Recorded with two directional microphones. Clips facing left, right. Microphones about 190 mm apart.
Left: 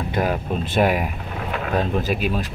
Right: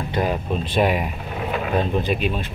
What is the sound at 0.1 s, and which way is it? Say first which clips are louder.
Speech: even; 5° left (ahead or behind).